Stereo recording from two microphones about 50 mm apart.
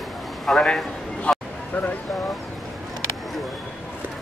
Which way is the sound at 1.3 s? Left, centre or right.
Centre.